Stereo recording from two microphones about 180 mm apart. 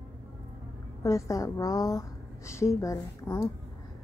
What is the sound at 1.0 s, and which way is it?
A woman's voice, 15° left (ahead or behind).